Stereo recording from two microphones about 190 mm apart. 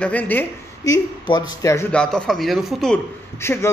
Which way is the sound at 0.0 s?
10° left (ahead or behind).